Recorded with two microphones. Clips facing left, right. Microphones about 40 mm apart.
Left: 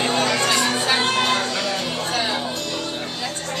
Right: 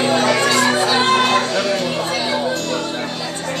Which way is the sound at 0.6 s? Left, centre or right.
Right.